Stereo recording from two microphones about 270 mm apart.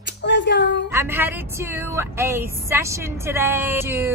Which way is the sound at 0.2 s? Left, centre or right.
Left.